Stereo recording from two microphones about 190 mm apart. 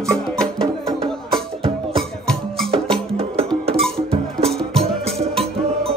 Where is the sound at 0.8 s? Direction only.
25° right (ahead or behind).